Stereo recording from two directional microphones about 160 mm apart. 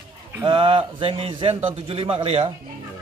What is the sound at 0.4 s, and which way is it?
A man's voice, 30° right (ahead or behind).